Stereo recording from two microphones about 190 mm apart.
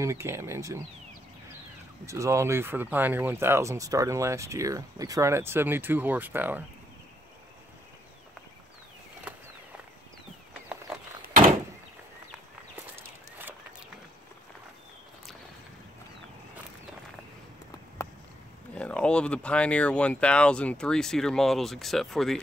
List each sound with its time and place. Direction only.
0.0 s speech: 15° right (ahead or behind)
2.0 s speech: 15° right (ahead or behind)
13.4 s a sound: 10° right (ahead or behind)
18.8 s speech: 5° left (ahead or behind)